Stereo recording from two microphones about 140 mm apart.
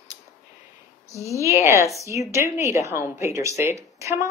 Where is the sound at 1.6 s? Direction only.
20° right (ahead or behind).